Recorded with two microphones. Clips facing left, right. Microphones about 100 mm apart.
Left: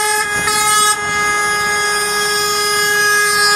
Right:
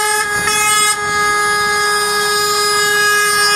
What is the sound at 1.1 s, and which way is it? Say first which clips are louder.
Vehicle: right 2 dB; 10° right (ahead or behind).